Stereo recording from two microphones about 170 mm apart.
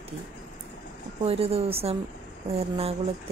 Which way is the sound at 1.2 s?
35° right (ahead or behind).